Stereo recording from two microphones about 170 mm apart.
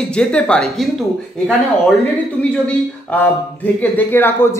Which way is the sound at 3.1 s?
10° left (ahead or behind).